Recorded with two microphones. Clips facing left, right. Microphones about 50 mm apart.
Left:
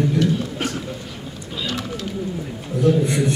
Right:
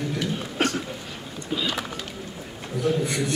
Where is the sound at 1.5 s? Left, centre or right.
Centre.